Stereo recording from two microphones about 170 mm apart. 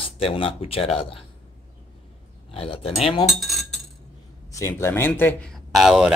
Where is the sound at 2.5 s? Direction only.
35° left (ahead or behind).